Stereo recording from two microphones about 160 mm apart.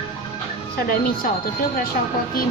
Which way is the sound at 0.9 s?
65° left (ahead or behind).